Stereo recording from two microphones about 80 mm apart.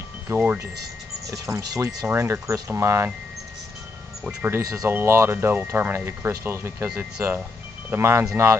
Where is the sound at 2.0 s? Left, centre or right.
Right.